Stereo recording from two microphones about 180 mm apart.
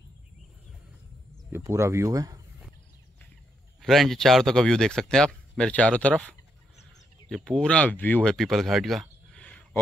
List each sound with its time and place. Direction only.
1.5 s speech: 15° right (ahead or behind)
3.8 s speech: centre (ahead or behind)
9.3 s a sound: 10° left (ahead or behind)